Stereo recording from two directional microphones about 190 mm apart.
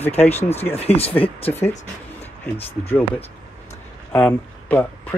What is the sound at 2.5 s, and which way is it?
Speech, 10° left (ahead or behind).